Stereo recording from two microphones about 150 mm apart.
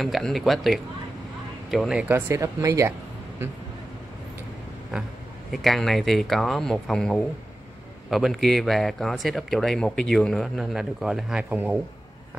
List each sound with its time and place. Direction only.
0.0 s speech: centre (ahead or behind); by 2.9 s 20° right (ahead or behind)
5.5 s speech: centre (ahead or behind)